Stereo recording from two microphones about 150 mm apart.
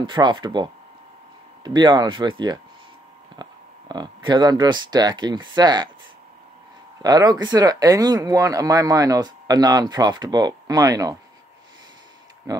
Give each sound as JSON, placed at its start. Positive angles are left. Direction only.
{"t": 0.0, "sound": "speech", "side_deg": -30}
{"t": 3.4, "sound": "a sound", "side_deg": -30}
{"t": 3.9, "sound": "speech", "side_deg": -30}
{"t": 7.0, "sound": "speech", "side_deg": -25}
{"t": 12.5, "sound": "speech", "side_deg": -20}